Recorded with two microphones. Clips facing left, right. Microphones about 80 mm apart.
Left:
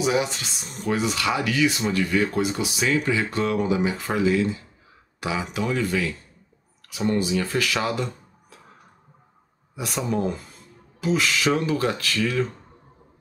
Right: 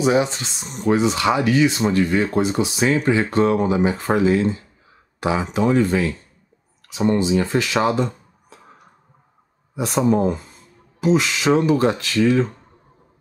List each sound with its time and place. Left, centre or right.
0.0 s speech: right
9.8 s speech: right